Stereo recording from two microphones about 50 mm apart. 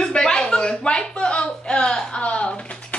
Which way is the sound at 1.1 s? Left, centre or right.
Left.